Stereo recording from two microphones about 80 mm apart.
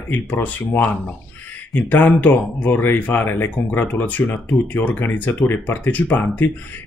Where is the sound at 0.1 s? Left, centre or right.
Left.